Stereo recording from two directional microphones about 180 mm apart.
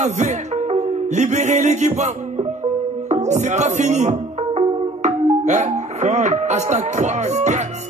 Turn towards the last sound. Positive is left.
turn(degrees=-40)  # may be behind; listen again after turning